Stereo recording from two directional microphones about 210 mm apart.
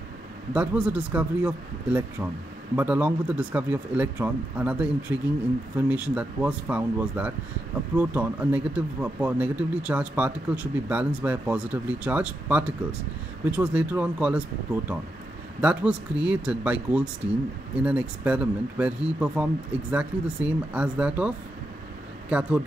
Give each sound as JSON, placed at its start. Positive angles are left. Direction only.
{"t": 0.5, "sound": "speech", "side_deg": -5}